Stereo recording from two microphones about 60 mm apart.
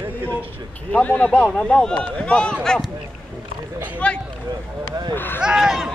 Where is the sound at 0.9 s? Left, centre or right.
Left.